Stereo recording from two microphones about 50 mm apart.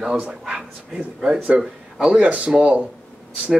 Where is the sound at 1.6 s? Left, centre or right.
Centre.